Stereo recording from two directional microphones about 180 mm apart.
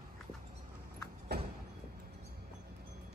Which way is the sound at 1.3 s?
65° right (ahead or behind).